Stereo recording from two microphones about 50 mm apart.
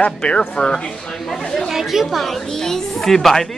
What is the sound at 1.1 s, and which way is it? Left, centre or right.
Chatter, centre.